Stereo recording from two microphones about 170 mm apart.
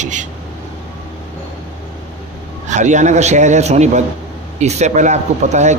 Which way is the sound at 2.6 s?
45° right (ahead or behind).